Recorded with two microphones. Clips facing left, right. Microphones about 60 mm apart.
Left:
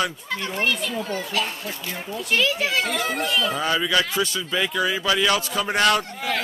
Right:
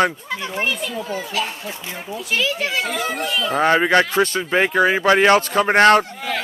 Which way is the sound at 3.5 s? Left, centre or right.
Right.